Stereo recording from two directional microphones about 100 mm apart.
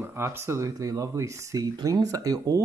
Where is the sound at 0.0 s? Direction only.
25° right (ahead or behind).